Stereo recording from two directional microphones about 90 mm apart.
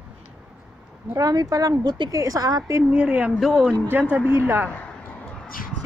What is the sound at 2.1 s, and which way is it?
Cat, 40° right (ahead or behind).